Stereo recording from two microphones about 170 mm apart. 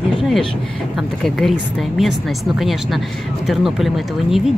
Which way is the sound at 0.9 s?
Centre (ahead or behind).